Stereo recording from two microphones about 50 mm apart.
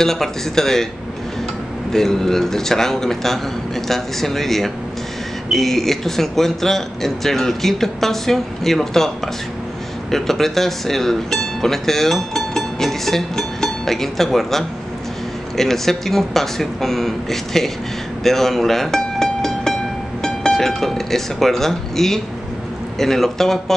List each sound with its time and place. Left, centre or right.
0.0 s speech: centre
1.9 s speech: centre
10.1 s speech: centre
18.2 s music: centre
20.2 s speech: centre